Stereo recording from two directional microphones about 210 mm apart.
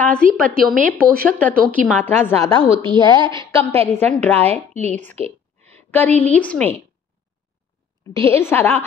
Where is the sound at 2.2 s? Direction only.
10° left (ahead or behind).